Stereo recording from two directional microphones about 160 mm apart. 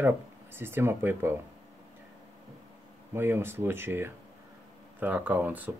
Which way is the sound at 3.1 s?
15° right (ahead or behind).